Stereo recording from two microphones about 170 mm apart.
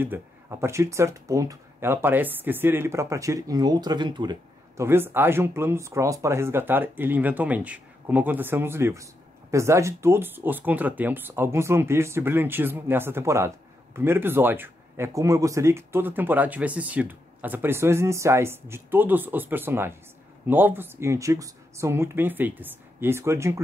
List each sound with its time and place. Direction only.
0.0 s speech: 15° right (ahead or behind)
4.8 s speech: 15° right (ahead or behind)